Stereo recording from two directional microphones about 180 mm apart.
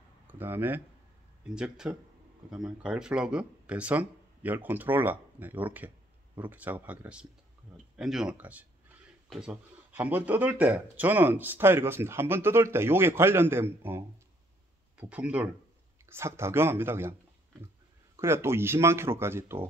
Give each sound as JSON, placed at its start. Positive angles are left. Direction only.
{"t": 0.3, "sound": "speech", "side_deg": -10}
{"t": 18.1, "sound": "speech", "side_deg": -15}